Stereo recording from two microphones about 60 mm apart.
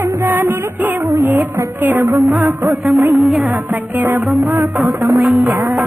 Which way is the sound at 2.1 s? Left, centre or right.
Right.